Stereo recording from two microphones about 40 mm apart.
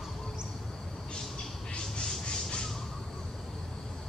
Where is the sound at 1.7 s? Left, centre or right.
Left.